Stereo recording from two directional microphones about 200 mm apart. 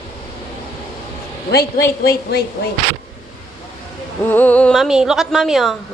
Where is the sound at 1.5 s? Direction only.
50° left (ahead or behind).